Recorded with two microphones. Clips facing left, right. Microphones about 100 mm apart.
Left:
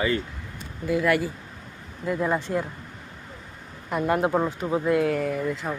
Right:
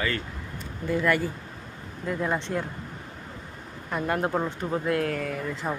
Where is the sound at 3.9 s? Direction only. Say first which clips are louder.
Left 4 dB; 15° left (ahead or behind).